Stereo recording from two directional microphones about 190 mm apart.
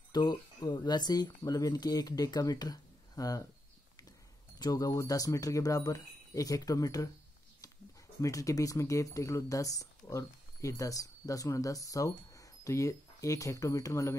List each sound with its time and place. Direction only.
0.1 s speech: 20° left (ahead or behind)
4.6 s speech: 20° left (ahead or behind)
8.2 s speech: 15° left (ahead or behind)